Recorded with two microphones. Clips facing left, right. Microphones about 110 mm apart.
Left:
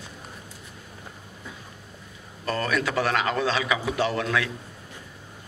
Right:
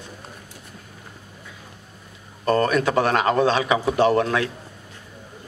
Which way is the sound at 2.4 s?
40° right (ahead or behind).